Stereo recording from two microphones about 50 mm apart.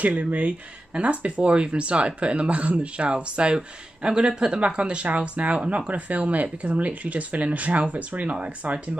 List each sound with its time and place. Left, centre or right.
0.0 s speech: right
5.9 s speech: right